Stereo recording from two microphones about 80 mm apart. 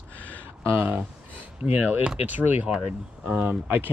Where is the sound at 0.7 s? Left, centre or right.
Right.